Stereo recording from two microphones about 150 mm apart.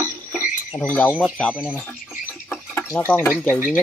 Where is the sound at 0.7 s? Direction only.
10° left (ahead or behind).